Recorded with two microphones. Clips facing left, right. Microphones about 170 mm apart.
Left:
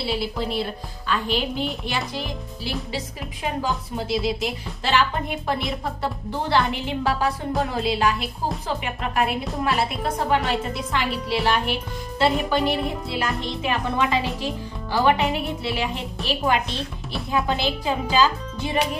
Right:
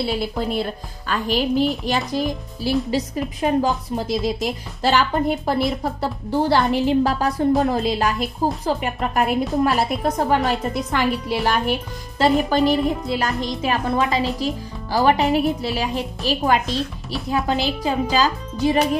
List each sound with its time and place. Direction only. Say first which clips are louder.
0.0 s a woman's voice: right 3 dB; 50° right (ahead or behind)